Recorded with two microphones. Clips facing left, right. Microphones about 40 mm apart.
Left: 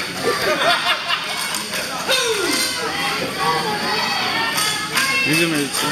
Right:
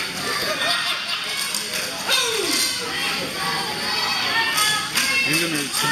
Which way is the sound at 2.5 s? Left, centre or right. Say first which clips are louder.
Left 3 dB; centre.